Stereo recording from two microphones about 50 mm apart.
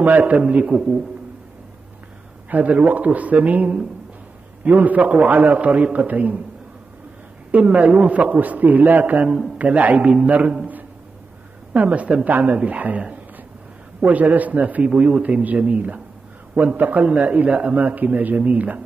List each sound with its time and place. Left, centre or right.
0.0 s a man's voice: right
2.5 s a man's voice: right
7.5 s a man's voice: right
11.8 s a man's voice: right
14.0 s a man's voice: right
17.7 s speech: right